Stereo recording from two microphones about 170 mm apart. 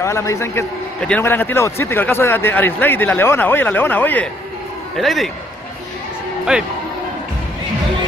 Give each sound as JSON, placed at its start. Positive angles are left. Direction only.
{"t": 0.0, "sound": "speech", "side_deg": 15}
{"t": 4.9, "sound": "a man's voice", "side_deg": 0}
{"t": 6.5, "sound": "a man's voice", "side_deg": -5}